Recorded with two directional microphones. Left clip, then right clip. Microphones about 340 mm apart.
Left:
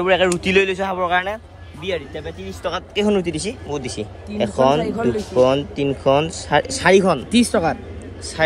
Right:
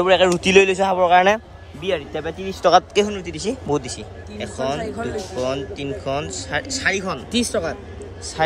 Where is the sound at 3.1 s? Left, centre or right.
Centre.